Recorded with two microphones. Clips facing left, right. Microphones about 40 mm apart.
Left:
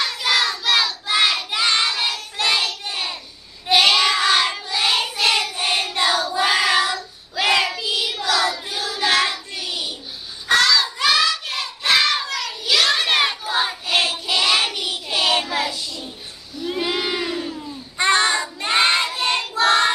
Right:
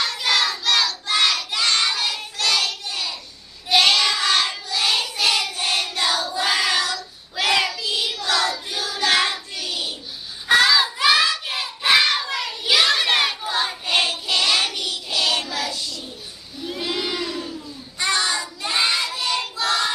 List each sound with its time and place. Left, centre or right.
0.0 s child singing: centre; by 3.2 s left
3.7 s child singing: centre
10.5 s crowd: centre
11.0 s a sound: centre
12.3 s child singing: centre
12.9 s a sound: centre
13.5 s child singing: centre
15.1 s child singing: left